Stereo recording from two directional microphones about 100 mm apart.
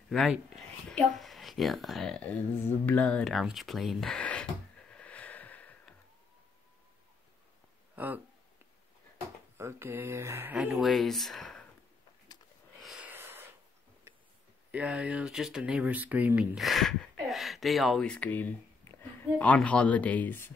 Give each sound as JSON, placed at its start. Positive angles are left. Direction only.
{"t": 0.1, "sound": "a woman's voice", "side_deg": 0}
{"t": 2.2, "sound": "speech", "side_deg": 15}
{"t": 3.3, "sound": "a sound", "side_deg": 0}
{"t": 7.9, "sound": "a sound", "side_deg": -20}
{"t": 9.6, "sound": "mantra", "side_deg": -25}
{"t": 10.5, "sound": "speech", "side_deg": -15}
{"t": 10.8, "sound": "speech", "side_deg": 0}
{"t": 12.8, "sound": "a sound", "side_deg": -5}
{"t": 13.1, "sound": "a sound", "side_deg": -20}
{"t": 14.1, "sound": "tick", "side_deg": -25}
{"t": 14.7, "sound": "speech", "side_deg": -15}
{"t": 16.5, "sound": "speech", "side_deg": 0}
{"t": 18.0, "sound": "speech", "side_deg": 15}